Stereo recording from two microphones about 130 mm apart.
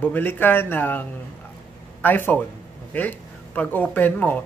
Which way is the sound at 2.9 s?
10° left (ahead or behind).